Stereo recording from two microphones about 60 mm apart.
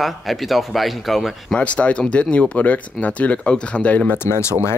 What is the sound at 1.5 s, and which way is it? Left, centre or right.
Speech, left.